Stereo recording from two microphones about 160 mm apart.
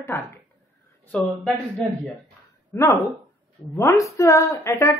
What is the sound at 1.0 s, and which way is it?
Speech, 5° left (ahead or behind).